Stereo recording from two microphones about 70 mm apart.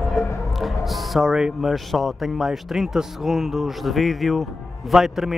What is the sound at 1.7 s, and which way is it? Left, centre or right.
Speech, centre.